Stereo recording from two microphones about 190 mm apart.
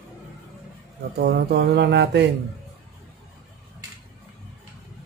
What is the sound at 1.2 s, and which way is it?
Speech, 60° right (ahead or behind).